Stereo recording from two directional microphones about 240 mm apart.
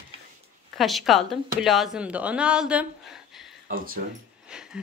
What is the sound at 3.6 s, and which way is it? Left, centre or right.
Speech, right.